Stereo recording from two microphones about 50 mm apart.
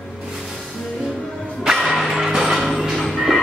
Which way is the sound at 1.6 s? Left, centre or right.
Centre.